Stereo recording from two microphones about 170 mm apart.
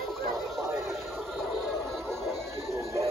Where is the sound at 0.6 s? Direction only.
15° right (ahead or behind).